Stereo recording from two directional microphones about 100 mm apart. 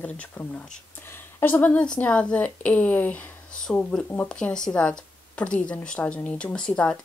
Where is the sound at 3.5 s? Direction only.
5° left (ahead or behind).